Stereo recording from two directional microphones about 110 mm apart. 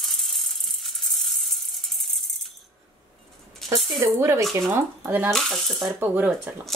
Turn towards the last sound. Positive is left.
turn(degrees=-20)  # may be behind; listen again after turning